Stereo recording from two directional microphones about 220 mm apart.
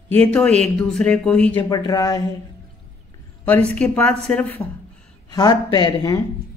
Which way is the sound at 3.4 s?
5° left (ahead or behind).